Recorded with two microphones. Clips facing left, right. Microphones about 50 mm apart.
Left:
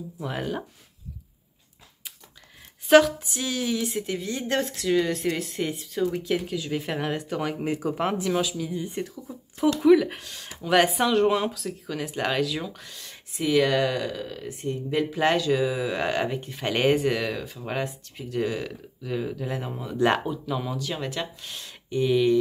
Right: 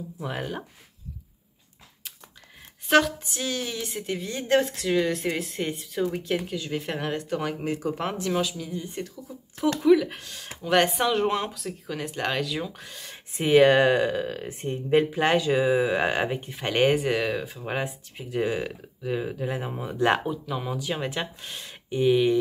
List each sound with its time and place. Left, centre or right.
0.2 s speech: centre
2.9 s speech: centre
8.7 s speech: centre
9.8 s speech: centre
13.4 s speech: right
15.0 s speech: centre
15.4 s speech: right
20.0 s speech: centre